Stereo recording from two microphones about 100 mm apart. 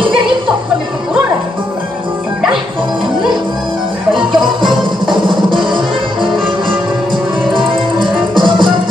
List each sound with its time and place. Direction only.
5.1 s music: 55° right (ahead or behind)
8.4 s music: 55° right (ahead or behind)